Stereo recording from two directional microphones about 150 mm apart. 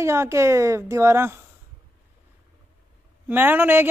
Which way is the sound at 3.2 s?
15° right (ahead or behind).